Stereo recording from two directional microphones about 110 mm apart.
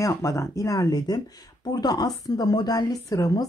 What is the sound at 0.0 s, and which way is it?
Speech, 30° left (ahead or behind).